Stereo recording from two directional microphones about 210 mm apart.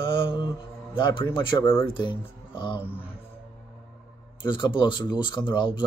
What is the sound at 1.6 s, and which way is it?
Speech, 10° left (ahead or behind).